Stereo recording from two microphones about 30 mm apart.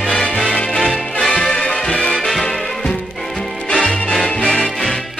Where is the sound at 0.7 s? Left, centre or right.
Centre.